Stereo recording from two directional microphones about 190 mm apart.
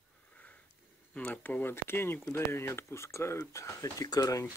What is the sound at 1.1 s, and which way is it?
Speech, 10° left (ahead or behind).